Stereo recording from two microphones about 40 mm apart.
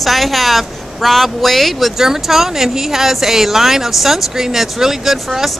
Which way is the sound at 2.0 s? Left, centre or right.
Centre.